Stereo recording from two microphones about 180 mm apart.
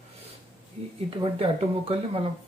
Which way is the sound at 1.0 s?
30° right (ahead or behind).